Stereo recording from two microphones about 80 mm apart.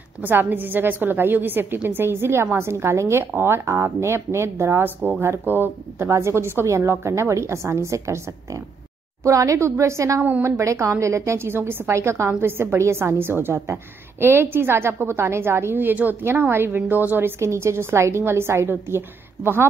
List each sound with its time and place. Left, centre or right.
0.2 s a woman's voice: right
9.2 s a woman's voice: right